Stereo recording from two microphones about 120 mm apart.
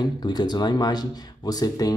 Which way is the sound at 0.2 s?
35° left (ahead or behind).